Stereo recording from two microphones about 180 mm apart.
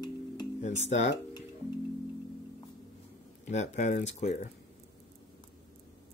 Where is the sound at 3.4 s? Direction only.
40° left (ahead or behind).